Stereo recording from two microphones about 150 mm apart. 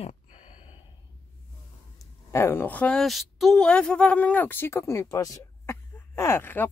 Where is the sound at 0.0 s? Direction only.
45° left (ahead or behind).